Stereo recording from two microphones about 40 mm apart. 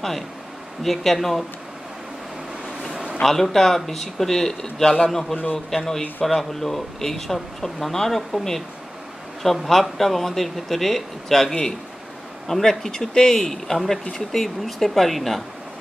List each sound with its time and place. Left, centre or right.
0.8 s a man's voice: centre
2.9 s a sound: right
3.3 s speech: centre
5.3 s a man's voice: left
5.7 s a man's voice: centre